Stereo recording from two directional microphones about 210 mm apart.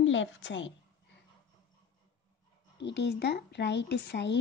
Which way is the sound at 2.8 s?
55° left (ahead or behind).